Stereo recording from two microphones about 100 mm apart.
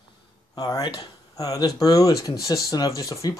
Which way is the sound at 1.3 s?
35° left (ahead or behind).